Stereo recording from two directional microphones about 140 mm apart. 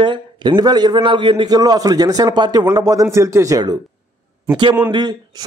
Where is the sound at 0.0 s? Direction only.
35° right (ahead or behind).